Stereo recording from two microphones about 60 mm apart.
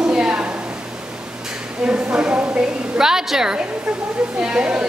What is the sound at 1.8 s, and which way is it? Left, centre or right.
Speech, centre.